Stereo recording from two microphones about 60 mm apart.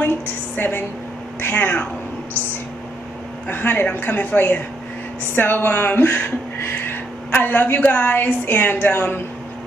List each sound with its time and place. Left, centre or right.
0.6 s a woman's voice: left
3.4 s a woman's voice: left